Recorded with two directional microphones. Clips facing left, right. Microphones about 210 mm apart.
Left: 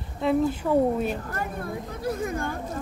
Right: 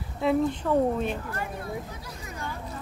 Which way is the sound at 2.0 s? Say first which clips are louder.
Left 10 dB; 55° left (ahead or behind).